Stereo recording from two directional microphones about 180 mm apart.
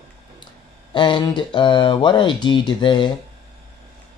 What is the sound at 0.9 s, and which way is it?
Speech, 25° left (ahead or behind).